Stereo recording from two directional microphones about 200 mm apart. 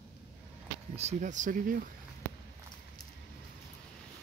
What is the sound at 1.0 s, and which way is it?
Speech, 35° right (ahead or behind).